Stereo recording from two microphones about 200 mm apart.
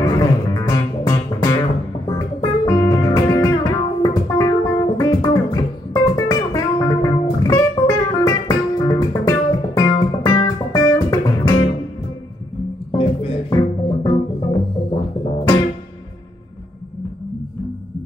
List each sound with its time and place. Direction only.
0.0 s music: 15° left (ahead or behind)
12.9 s music: 30° left (ahead or behind)